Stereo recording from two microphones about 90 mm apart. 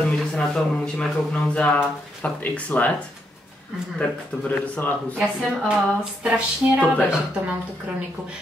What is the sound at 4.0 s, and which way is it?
Speech, 15° left (ahead or behind).